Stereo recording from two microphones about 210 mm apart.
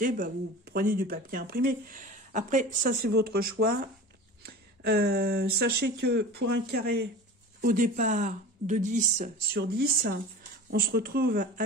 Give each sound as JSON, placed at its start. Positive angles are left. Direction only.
{"t": 0.0, "sound": "speech", "side_deg": -45}
{"t": 9.6, "sound": "speech", "side_deg": -50}